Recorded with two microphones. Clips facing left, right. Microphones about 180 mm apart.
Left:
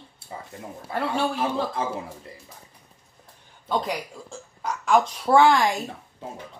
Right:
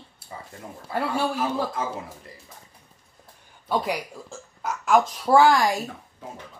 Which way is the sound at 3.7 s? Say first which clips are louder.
Right 1 dB; 10° right (ahead or behind).